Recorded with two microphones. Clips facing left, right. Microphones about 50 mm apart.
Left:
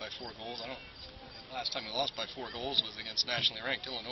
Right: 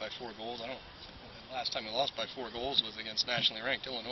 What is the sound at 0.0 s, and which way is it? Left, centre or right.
Speech, centre.